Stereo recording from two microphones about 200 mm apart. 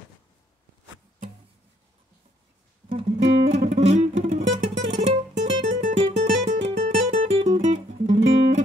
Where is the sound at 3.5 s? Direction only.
35° right (ahead or behind).